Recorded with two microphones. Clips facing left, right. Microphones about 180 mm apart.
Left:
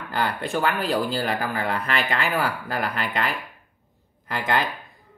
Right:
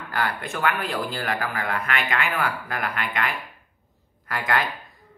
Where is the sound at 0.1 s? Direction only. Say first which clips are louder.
Left 3 dB; 30° left (ahead or behind).